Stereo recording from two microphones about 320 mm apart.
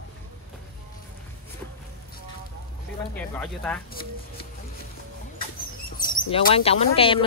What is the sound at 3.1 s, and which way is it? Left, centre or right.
Speech, centre.